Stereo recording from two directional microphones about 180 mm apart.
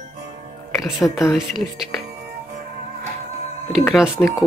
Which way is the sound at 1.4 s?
Centre (ahead or behind).